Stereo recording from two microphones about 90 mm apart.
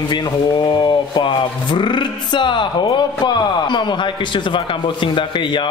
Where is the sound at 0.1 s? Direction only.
60° left (ahead or behind).